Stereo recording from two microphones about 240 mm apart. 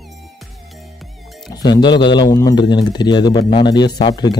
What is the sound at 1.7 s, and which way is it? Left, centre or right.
A man's voice, centre.